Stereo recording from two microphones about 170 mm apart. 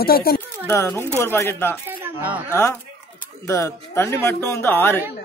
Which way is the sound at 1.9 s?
10° right (ahead or behind).